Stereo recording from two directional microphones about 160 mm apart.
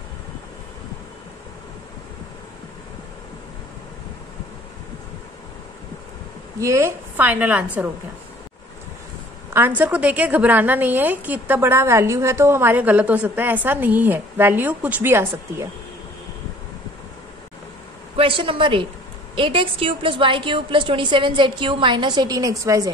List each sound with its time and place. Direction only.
6.6 s a woman's voice: 15° right (ahead or behind)
9.5 s a woman's voice: 10° right (ahead or behind)
18.1 s a woman's voice: 35° right (ahead or behind)